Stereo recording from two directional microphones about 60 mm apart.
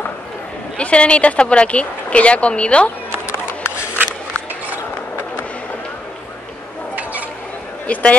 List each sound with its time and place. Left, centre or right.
0.7 s speech: centre
7.0 s a sound: right
7.8 s speech: left